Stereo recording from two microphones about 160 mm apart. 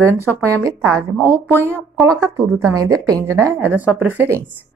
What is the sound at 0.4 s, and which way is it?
Speech, 20° right (ahead or behind).